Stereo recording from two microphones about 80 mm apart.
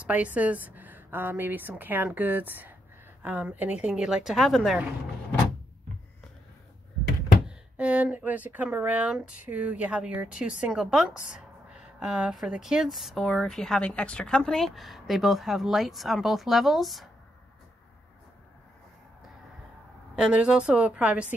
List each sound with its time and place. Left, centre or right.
0.0 s a woman's voice: centre
7.4 s a woman's voice: centre
20.2 s a woman's voice: centre